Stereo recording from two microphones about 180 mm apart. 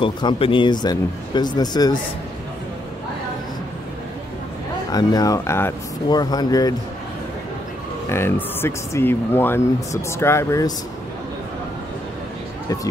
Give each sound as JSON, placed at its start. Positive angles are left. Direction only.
{"t": 0.0, "sound": "speech", "side_deg": 25}
{"t": 4.9, "sound": "speech", "side_deg": 20}
{"t": 8.1, "sound": "speech", "side_deg": 15}